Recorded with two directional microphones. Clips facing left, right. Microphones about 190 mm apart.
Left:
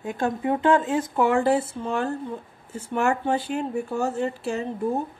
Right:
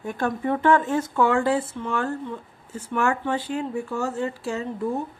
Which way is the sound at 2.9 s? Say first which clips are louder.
Left 1 dB; 25° left (ahead or behind).